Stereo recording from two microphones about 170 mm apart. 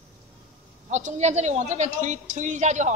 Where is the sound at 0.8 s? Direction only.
45° right (ahead or behind).